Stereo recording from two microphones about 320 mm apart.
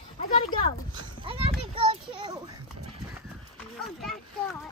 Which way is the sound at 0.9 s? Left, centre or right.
Centre.